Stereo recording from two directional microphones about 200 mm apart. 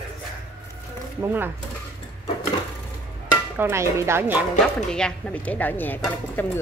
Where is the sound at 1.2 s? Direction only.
10° right (ahead or behind).